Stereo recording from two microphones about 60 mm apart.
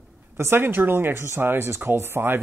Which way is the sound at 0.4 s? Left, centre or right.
Right.